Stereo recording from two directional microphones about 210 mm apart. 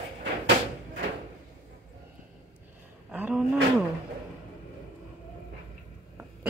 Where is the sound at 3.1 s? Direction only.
5° right (ahead or behind).